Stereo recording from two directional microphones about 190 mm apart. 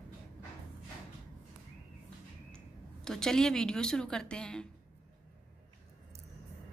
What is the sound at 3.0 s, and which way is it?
A woman's voice, 5° left (ahead or behind).